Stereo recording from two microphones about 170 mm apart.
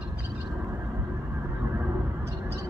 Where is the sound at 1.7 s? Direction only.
15° right (ahead or behind).